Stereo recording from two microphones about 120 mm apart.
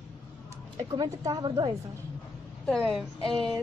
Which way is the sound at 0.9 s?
35° right (ahead or behind).